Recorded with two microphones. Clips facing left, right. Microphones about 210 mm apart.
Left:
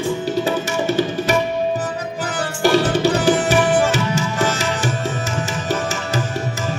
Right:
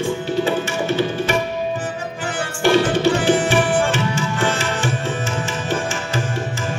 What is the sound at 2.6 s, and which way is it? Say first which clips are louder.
Tabla: even; 40° left (ahead or behind).